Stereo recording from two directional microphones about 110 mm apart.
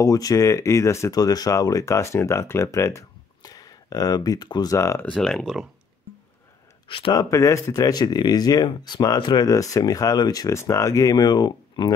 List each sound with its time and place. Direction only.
0.0 s speech: 30° left (ahead or behind)
5.0 s speech: 5° left (ahead or behind)
6.9 s speech: 55° left (ahead or behind)
7.2 s speech: 30° left (ahead or behind)